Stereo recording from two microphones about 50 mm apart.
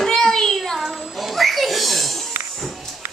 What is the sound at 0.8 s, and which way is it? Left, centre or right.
Music, centre.